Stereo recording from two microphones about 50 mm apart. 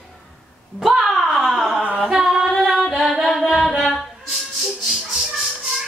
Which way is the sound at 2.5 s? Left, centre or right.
Centre.